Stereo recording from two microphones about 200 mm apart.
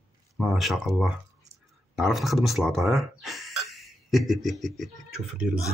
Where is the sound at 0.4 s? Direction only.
Centre (ahead or behind).